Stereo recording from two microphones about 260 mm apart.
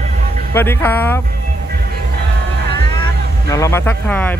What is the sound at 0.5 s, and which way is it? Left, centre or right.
Speech, centre.